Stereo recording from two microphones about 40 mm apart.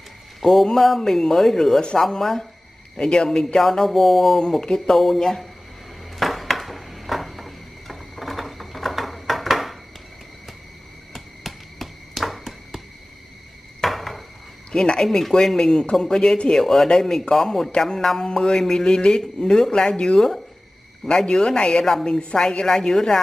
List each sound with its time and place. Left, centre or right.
0.4 s speech: centre
3.0 s speech: centre
4.4 s speech: centre
6.1 s a sound: centre
11.1 s a sound: centre
14.7 s speech: centre